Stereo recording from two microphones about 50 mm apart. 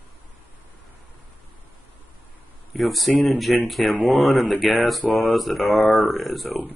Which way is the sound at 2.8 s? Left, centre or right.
Centre.